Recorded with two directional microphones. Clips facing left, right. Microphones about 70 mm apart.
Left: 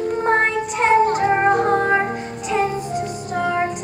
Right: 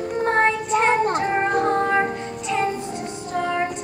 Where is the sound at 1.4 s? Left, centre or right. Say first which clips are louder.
Left 3 dB; centre.